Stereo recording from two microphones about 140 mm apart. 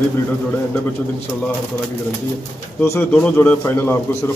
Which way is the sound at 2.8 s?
15° left (ahead or behind).